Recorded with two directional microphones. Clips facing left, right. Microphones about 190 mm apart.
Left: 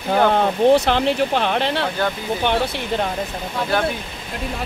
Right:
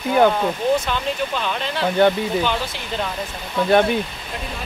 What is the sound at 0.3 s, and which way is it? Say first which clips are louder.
Speech: left 5 dB; 70° left (ahead or behind).